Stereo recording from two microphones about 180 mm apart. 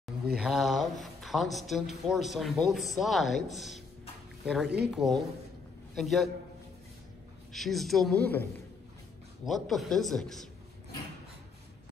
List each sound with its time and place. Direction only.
0.4 s speech: centre (ahead or behind)
4.6 s speech: 65° right (ahead or behind)
4.9 s speech: centre (ahead or behind)
7.5 s speech: centre (ahead or behind)
9.5 s speech: centre (ahead or behind)